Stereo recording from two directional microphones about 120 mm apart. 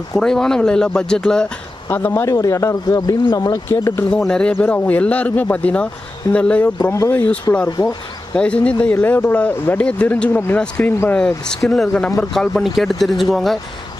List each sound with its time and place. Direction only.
0.1 s speech: 5° left (ahead or behind)
1.9 s speech: 15° left (ahead or behind)
3.6 s speech: 20° left (ahead or behind)
4.1 s speech: 5° left (ahead or behind)
6.8 s speech: 30° left (ahead or behind)
7.1 s speech: 10° left (ahead or behind)
8.4 s speech: 10° left (ahead or behind)